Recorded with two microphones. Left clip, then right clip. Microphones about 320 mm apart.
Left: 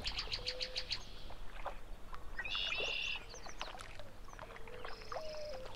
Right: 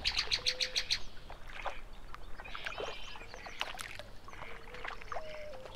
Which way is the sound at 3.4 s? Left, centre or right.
Centre.